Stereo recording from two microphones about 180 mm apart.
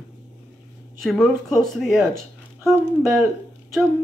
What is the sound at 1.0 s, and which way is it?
Speech, centre (ahead or behind).